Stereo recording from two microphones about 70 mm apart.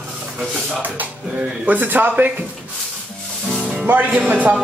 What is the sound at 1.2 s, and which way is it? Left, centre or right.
Speech, centre.